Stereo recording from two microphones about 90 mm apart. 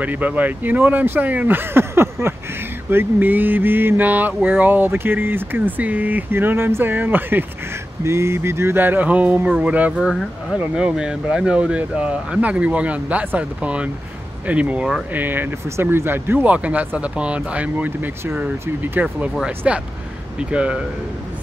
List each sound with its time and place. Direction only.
0.0 s speech: 15° right (ahead or behind)
9.9 s speech: 5° right (ahead or behind)
15.1 s speech: 20° right (ahead or behind)